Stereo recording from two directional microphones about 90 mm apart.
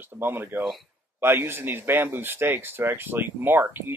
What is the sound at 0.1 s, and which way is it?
Speech, 25° right (ahead or behind).